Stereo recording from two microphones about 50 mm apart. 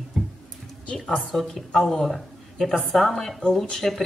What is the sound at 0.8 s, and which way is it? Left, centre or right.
Speech, left.